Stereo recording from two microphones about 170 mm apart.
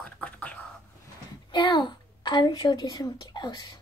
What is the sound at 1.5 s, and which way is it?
A child's voice, 25° left (ahead or behind).